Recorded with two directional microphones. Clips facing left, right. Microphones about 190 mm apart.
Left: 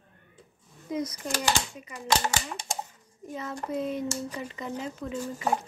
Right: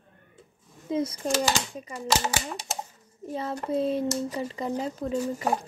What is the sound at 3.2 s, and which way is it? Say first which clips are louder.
A child's voice: right 4 dB; 30° right (ahead or behind).